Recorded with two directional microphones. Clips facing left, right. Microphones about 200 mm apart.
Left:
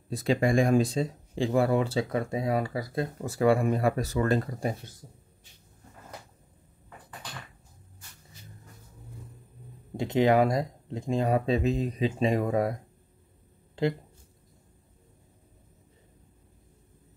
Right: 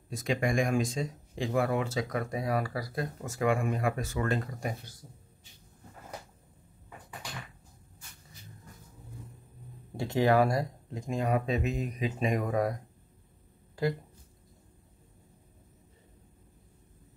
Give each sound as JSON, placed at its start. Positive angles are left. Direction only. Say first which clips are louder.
{"t": 0.1, "sound": "speech", "louder": "left 5 dB", "side_deg": 35}
{"t": 9.9, "sound": "speech", "louder": "left 3 dB", "side_deg": 20}
{"t": 13.8, "sound": "speech", "louder": "left 3 dB", "side_deg": 25}